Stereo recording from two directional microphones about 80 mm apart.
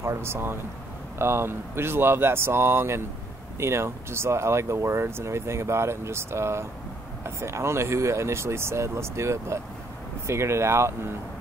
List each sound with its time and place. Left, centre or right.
0.0 s speech: right